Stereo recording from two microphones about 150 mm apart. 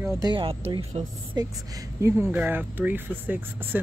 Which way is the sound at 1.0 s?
45° right (ahead or behind).